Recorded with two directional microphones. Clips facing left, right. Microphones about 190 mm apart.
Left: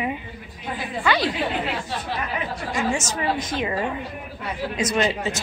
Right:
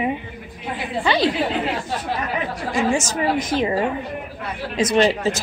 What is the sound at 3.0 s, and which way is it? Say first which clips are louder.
A woman's voice: right 4 dB; 35° right (ahead or behind).